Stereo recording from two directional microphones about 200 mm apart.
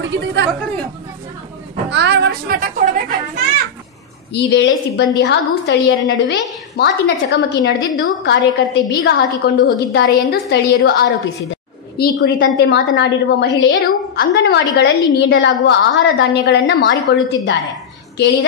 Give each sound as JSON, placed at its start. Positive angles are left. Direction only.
{"t": 0.2, "sound": "a woman's voice", "side_deg": -60}
{"t": 1.9, "sound": "a woman's voice", "side_deg": -60}
{"t": 4.3, "sound": "a woman's voice", "side_deg": 60}